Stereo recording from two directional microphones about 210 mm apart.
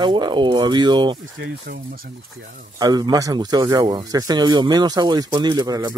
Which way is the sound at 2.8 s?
20° right (ahead or behind).